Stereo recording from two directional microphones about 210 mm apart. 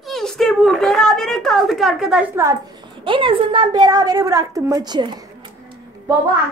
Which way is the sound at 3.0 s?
25° right (ahead or behind).